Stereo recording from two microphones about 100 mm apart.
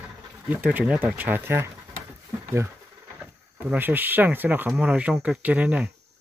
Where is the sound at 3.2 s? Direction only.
15° right (ahead or behind).